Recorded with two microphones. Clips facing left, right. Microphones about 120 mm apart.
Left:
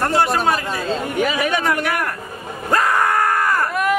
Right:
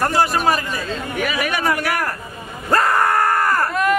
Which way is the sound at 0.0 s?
Centre (ahead or behind).